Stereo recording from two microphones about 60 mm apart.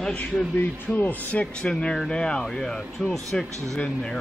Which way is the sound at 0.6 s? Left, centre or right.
Left.